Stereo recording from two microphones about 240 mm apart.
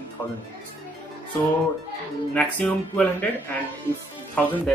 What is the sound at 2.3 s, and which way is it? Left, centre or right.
Speech, centre.